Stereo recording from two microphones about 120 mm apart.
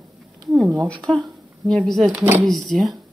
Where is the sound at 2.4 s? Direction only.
Centre (ahead or behind).